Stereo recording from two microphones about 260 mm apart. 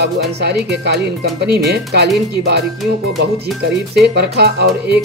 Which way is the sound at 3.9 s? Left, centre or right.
Right.